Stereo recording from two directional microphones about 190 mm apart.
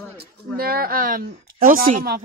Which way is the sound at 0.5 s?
50° right (ahead or behind).